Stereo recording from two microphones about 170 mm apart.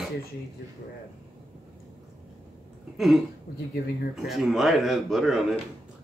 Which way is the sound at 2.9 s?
Centre (ahead or behind).